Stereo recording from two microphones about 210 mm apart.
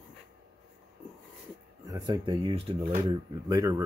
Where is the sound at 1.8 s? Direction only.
15° right (ahead or behind).